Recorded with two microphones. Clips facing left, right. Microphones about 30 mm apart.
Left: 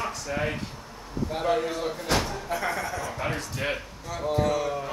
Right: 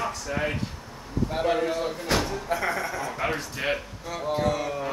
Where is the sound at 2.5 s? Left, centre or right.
Right.